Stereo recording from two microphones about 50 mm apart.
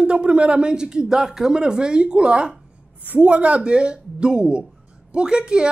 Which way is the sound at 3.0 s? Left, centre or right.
Right.